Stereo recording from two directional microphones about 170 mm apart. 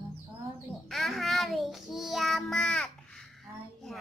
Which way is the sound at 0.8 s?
Centre (ahead or behind).